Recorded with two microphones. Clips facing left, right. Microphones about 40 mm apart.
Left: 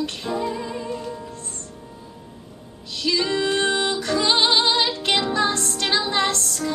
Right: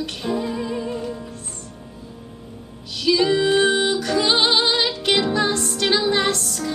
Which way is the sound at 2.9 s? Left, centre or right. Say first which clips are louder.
Right 4 dB; centre.